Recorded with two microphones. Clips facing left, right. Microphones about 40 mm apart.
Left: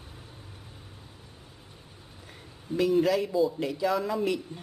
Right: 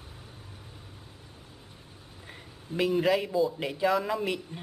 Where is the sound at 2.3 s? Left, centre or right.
Right.